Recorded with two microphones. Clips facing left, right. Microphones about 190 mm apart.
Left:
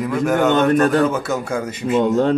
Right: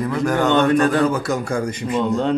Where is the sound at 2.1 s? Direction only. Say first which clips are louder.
Left 1 dB; 45° left (ahead or behind).